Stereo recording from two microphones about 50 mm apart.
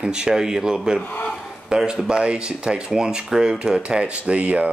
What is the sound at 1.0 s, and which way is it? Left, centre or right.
Speech, left.